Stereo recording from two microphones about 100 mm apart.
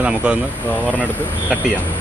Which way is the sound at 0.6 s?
15° left (ahead or behind).